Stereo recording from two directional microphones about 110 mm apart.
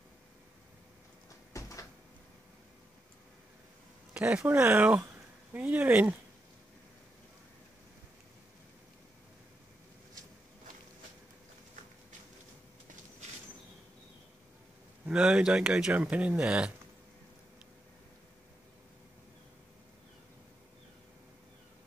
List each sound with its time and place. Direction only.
1.5 s cupboard open or close: 30° left (ahead or behind)
4.4 s speech: 20° right (ahead or behind)
15.0 s speech: 10° right (ahead or behind)